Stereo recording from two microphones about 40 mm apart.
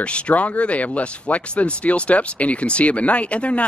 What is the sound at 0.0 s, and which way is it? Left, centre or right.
Speech, left.